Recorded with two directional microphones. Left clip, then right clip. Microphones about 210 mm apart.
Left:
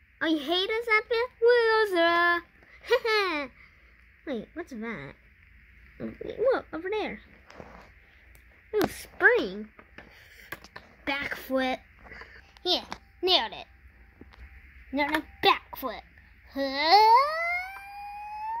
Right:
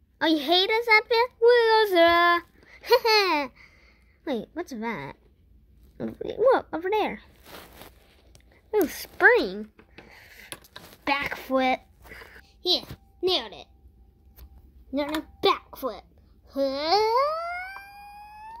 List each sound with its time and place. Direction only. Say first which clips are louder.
0.2 s speech: right 5 dB; 5° left (ahead or behind)
8.9 s a sound: right 4 dB; 5° left (ahead or behind)
12.6 s a child's voice: right 2 dB; 30° left (ahead or behind)
15.4 s babbling: right 1 dB; 30° left (ahead or behind)